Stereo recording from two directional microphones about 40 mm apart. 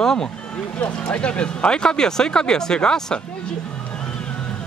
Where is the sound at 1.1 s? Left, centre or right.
Left.